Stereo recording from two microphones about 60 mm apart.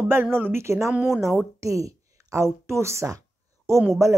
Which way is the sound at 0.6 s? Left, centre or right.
Right.